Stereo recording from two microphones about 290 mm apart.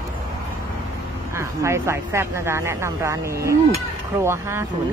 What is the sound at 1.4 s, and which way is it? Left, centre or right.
Speech, centre.